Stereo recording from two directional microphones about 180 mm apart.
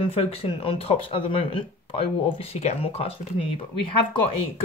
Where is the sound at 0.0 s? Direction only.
30° left (ahead or behind).